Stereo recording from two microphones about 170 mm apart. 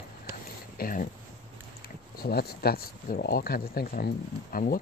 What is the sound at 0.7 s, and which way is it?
Speech, 55° left (ahead or behind).